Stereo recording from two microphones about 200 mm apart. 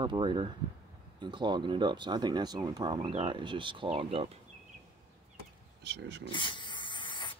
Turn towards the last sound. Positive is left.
turn(degrees=25)  # may be behind; listen again after turning